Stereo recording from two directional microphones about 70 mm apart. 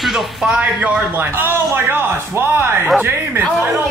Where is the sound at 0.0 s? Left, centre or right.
Centre; by 2.9 s right.